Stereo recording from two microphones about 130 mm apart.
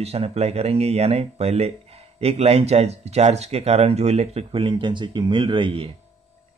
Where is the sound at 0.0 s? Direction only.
50° right (ahead or behind).